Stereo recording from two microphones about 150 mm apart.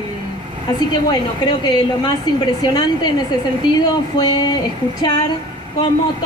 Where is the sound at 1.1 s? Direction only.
30° left (ahead or behind).